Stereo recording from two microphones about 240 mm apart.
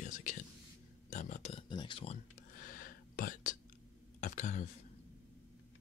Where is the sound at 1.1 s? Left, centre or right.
Left.